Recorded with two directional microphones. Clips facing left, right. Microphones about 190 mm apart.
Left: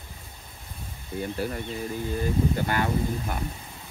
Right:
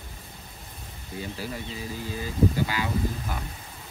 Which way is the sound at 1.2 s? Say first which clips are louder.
Left 5 dB; 55° left (ahead or behind).